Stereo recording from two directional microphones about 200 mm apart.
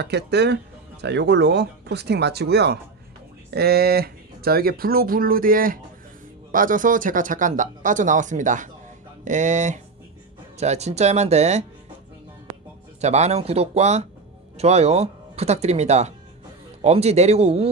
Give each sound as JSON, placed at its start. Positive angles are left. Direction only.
{"t": 0.0, "sound": "speech", "side_deg": -55}
{"t": 13.0, "sound": "speech", "side_deg": -35}